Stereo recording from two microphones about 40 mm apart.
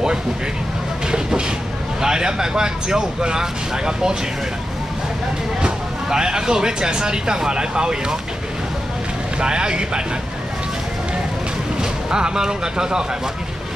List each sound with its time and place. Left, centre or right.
1.0 s train: centre
2.0 s speech: centre
5.6 s speech: centre
9.4 s speech: right
11.8 s speech: centre